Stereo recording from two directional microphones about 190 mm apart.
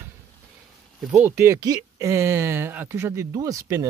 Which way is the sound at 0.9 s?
5° right (ahead or behind).